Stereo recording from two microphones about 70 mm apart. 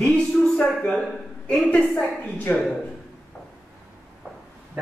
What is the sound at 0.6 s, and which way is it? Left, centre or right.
Speech, centre.